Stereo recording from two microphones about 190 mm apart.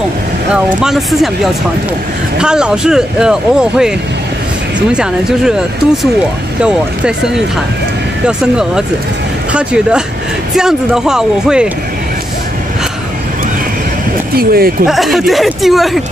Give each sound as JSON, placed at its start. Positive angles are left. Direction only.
{"t": 0.5, "sound": "speech", "side_deg": -5}
{"t": 6.6, "sound": "speech", "side_deg": -5}
{"t": 14.3, "sound": "speech", "side_deg": -55}
{"t": 14.9, "sound": "speech", "side_deg": 0}